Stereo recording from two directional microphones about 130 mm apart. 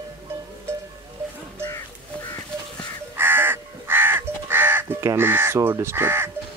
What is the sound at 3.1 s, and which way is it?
Crow, 15° right (ahead or behind).